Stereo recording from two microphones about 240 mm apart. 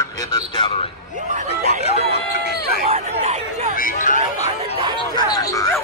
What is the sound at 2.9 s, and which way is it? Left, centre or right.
Speech, right.